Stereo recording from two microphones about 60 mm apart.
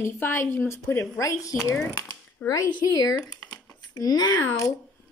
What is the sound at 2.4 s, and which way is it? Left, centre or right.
Speech, left.